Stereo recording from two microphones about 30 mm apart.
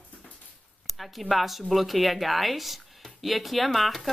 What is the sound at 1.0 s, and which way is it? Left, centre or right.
Speech, centre.